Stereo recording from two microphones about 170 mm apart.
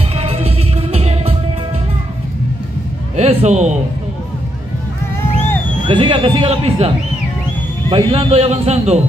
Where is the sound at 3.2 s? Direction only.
40° right (ahead or behind).